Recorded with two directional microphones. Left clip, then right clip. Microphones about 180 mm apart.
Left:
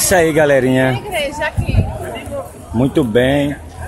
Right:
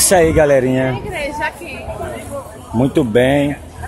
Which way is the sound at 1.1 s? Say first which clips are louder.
Left 3 dB; 25° left (ahead or behind).